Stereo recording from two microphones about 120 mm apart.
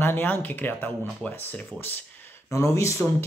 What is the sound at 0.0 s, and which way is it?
Speech, 15° left (ahead or behind).